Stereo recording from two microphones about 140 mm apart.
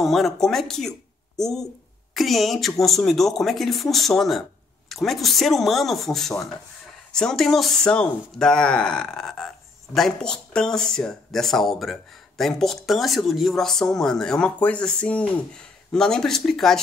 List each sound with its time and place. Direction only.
0.0 s speech: centre (ahead or behind)